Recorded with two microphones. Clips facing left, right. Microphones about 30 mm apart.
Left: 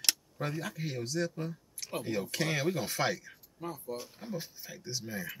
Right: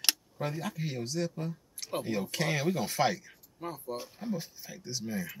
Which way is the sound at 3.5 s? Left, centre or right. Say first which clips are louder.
Right 1 dB; centre.